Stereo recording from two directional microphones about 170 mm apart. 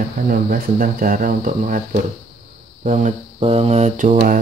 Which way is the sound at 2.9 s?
40° right (ahead or behind).